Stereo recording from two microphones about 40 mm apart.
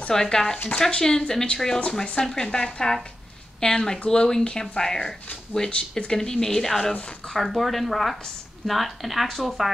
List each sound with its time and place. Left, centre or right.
0.1 s speech: centre
6.1 s speech: centre
7.3 s speech: centre